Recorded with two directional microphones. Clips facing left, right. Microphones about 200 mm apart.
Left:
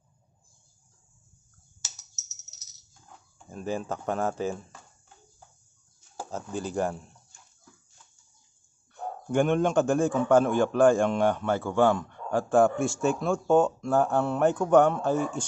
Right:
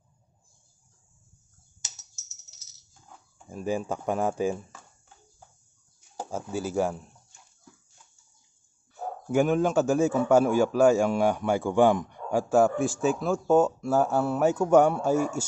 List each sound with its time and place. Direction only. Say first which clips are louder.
3.4 s a man's voice: right 2 dB; 10° right (ahead or behind)
5.9 s speech: right 2 dB; 10° right (ahead or behind)
8.9 s a man's voice: right 1 dB; 5° right (ahead or behind)